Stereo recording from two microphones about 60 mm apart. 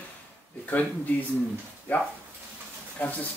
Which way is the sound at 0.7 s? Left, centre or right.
Left.